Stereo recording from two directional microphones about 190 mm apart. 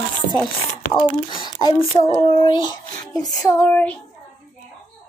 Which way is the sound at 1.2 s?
25° left (ahead or behind).